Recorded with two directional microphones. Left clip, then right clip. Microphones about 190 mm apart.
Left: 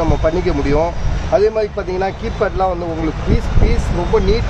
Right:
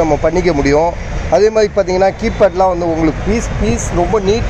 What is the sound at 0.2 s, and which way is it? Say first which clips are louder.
Speech: right 4 dB; 15° right (ahead or behind).